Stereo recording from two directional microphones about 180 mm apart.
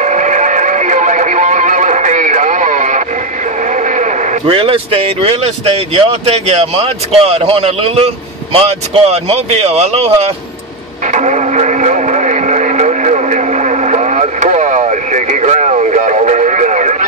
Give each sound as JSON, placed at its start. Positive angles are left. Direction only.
{"t": 0.0, "sound": "music", "side_deg": -40}
{"t": 4.0, "sound": "a man's voice", "side_deg": -30}
{"t": 11.1, "sound": "radio", "side_deg": -40}